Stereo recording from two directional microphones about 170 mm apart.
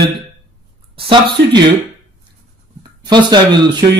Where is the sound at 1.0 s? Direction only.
30° right (ahead or behind).